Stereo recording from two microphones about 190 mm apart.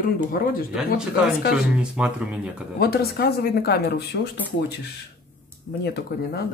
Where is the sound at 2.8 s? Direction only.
55° left (ahead or behind).